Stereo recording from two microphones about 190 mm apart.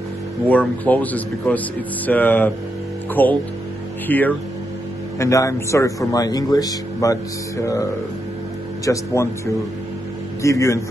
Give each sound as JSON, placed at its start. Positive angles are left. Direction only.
{"t": 0.5, "sound": "a man's voice", "side_deg": 10}
{"t": 10.4, "sound": "a man's voice", "side_deg": 15}